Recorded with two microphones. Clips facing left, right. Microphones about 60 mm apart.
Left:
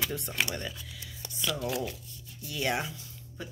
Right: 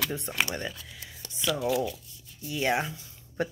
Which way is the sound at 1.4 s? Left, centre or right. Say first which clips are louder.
Right 5 dB; centre.